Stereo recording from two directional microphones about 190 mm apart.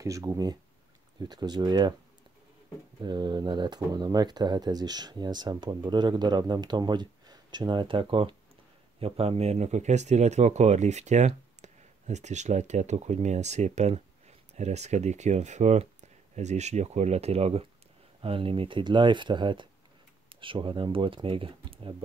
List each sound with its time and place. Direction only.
0.0 s speech: 15° right (ahead or behind)
3.0 s speech: 25° right (ahead or behind)